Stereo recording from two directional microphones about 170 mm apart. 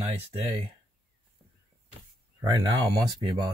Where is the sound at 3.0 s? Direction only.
25° right (ahead or behind).